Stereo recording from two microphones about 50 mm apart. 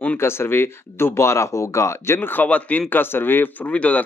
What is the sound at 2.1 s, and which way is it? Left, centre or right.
Speech, left.